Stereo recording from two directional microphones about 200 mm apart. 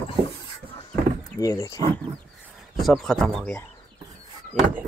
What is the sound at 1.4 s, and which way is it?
Speech, 15° left (ahead or behind).